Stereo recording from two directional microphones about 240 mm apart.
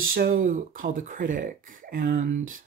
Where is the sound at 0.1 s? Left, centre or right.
Right.